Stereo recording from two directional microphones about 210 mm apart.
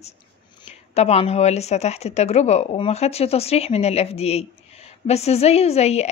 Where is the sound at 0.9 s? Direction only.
30° left (ahead or behind).